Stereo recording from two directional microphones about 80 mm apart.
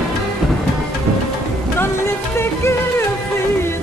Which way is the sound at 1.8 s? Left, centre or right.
Left.